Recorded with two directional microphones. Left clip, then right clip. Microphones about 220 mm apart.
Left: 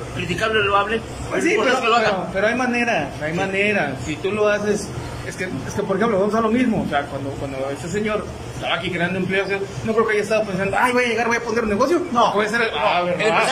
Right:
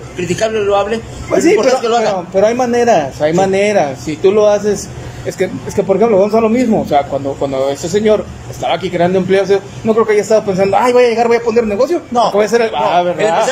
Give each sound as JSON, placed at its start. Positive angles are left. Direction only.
{"t": 0.4, "sound": "a man's voice", "side_deg": -25}
{"t": 5.9, "sound": "a man's voice", "side_deg": -20}